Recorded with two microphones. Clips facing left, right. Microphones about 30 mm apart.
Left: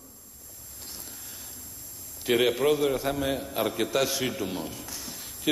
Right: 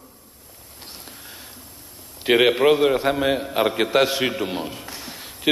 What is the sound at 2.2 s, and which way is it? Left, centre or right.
A man's voice, right.